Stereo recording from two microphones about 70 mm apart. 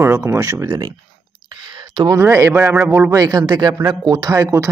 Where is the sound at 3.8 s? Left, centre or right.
Right.